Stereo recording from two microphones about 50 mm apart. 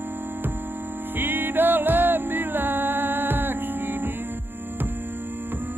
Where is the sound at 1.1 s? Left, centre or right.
Right.